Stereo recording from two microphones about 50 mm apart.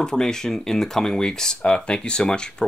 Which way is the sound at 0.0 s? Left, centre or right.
Centre.